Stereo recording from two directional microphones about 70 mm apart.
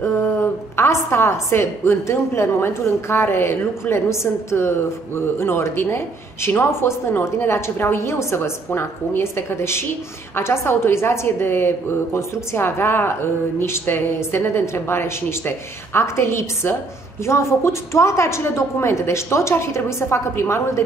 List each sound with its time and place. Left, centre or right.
0.0 s a woman's voice: left